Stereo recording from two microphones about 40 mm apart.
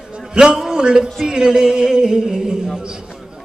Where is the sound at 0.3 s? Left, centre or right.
Right.